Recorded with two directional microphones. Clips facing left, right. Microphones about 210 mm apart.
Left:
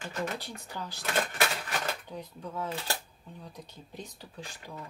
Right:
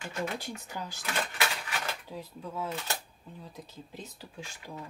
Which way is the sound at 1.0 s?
40° left (ahead or behind).